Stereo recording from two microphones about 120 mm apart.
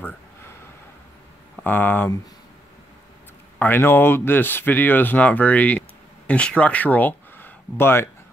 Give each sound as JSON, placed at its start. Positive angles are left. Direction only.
{"t": 1.6, "sound": "speech", "side_deg": 15}
{"t": 3.5, "sound": "speech", "side_deg": 15}